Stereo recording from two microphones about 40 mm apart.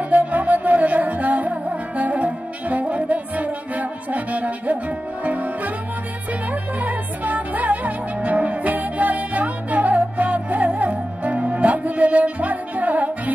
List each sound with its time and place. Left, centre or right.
0.1 s music: right